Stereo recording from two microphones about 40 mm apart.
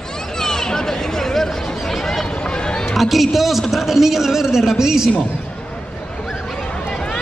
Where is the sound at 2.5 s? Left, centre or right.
Left.